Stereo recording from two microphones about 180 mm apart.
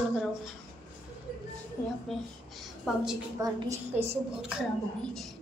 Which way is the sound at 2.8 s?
Centre (ahead or behind).